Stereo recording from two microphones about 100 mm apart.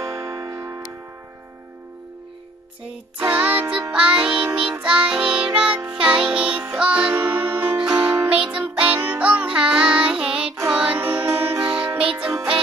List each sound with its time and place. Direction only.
0.0 s music: 35° right (ahead or behind)
3.2 s music: 15° right (ahead or behind)